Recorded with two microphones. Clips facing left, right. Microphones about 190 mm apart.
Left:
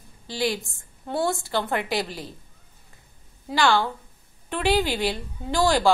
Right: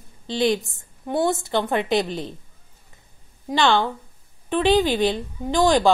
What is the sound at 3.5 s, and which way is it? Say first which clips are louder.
A woman's voice: right 2 dB; 20° right (ahead or behind).